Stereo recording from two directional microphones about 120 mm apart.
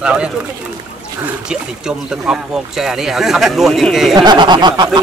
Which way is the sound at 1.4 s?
5° right (ahead or behind).